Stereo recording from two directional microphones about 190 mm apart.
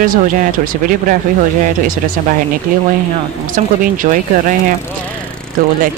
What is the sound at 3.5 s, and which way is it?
Speech, 45° right (ahead or behind).